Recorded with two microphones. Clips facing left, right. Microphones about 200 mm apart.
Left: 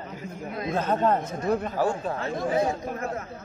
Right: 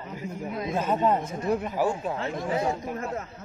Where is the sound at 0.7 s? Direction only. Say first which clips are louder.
Left 1 dB; 5° right (ahead or behind).